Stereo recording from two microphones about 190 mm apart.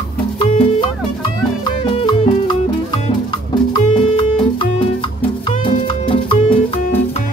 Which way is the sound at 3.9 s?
25° left (ahead or behind).